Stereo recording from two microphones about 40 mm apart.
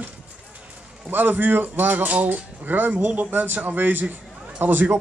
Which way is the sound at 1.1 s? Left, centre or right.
Right.